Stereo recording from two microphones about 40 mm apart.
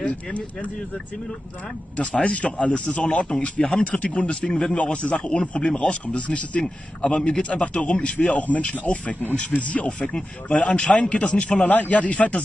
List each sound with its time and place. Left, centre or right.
2.0 s speech: left